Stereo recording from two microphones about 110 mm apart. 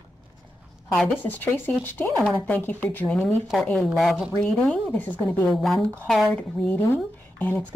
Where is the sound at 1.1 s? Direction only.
15° left (ahead or behind).